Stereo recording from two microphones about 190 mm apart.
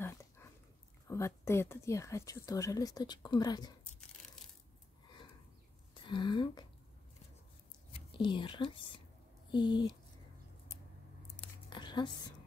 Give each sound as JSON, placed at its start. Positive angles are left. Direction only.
{"t": 1.0, "sound": "speech", "side_deg": 15}
{"t": 6.0, "sound": "speech", "side_deg": 25}
{"t": 7.9, "sound": "speech", "side_deg": 25}
{"t": 11.7, "sound": "music", "side_deg": 25}